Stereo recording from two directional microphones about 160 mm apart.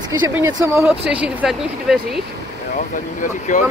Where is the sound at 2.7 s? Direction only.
50° left (ahead or behind).